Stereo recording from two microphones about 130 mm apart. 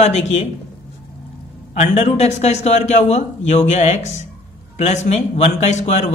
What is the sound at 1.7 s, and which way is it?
Speech, 60° left (ahead or behind).